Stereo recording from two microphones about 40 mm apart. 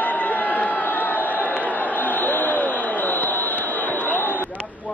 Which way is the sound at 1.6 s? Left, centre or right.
Left.